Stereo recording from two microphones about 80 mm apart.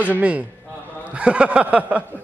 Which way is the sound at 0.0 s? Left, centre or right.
Centre.